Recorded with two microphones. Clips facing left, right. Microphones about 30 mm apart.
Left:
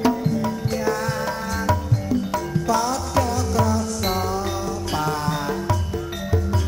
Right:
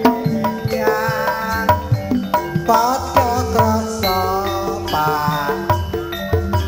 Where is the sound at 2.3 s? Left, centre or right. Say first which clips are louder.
Right 10 dB; right.